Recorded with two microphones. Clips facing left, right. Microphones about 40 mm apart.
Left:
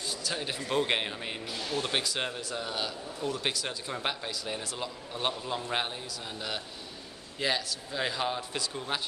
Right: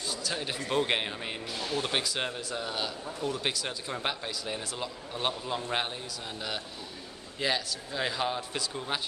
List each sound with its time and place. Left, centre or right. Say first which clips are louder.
0.1 s a sound: right 1 dB; centre
0.7 s speech: even; centre
7.3 s speech: even; centre